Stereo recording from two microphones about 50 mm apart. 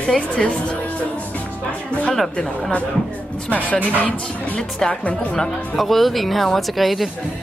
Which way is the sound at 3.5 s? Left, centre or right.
Left.